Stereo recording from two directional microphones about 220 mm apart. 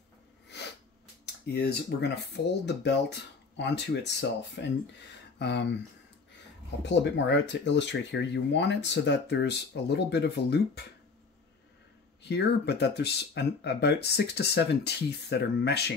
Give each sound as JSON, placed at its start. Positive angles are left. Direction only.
{"t": 0.5, "sound": "sneeze", "side_deg": 50}
{"t": 1.2, "sound": "speech", "side_deg": 50}
{"t": 5.4, "sound": "speech", "side_deg": 50}
{"t": 6.8, "sound": "speech", "side_deg": 50}
{"t": 12.2, "sound": "speech", "side_deg": 50}